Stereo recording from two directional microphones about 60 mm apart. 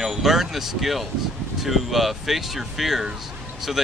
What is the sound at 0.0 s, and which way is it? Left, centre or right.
Speech, centre.